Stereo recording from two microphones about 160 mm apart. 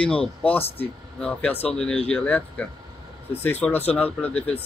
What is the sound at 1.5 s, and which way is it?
Speech, 40° left (ahead or behind).